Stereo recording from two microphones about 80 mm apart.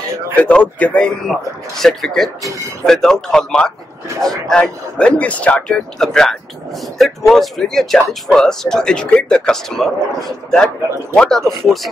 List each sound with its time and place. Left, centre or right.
0.4 s speech: centre